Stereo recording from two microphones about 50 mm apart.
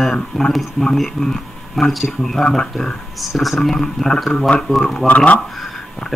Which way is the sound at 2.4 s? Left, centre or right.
Centre.